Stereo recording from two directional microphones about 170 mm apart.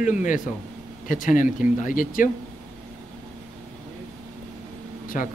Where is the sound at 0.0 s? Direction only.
50° left (ahead or behind).